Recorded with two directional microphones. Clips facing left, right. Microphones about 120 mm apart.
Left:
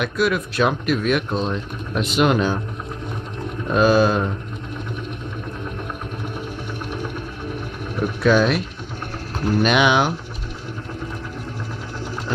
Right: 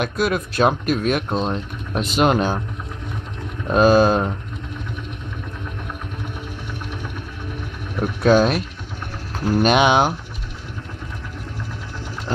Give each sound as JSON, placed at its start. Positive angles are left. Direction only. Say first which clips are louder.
{"t": 0.0, "sound": "speech", "louder": "even", "side_deg": -40}
{"t": 3.7, "sound": "speech", "louder": "right 2 dB", "side_deg": -40}
{"t": 8.2, "sound": "speech", "louder": "right 2 dB", "side_deg": -40}